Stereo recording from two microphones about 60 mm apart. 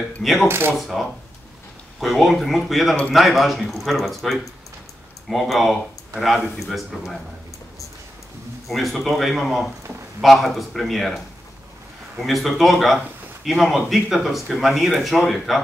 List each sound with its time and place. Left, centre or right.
0.2 s speech: centre
0.5 s speech: right
0.7 s speech: centre
8.6 s speech: centre